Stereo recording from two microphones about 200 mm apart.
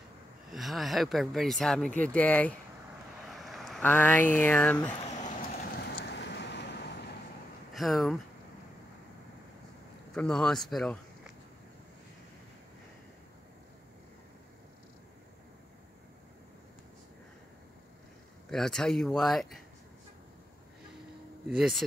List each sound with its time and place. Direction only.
0.5 s speech: centre (ahead or behind)
5.2 s vehicle: 45° left (ahead or behind)
7.7 s speech: centre (ahead or behind)
10.1 s speech: 5° left (ahead or behind)
18.5 s speech: centre (ahead or behind)
21.5 s speech: centre (ahead or behind)